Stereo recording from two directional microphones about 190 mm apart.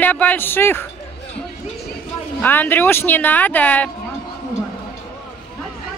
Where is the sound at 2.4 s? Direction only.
10° left (ahead or behind).